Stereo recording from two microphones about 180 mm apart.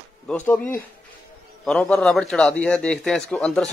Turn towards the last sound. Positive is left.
turn(degrees=5)  # may be behind; listen again after turning